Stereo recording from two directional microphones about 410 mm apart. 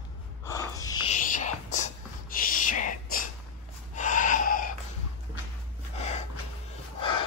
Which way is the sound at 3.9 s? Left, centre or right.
Centre.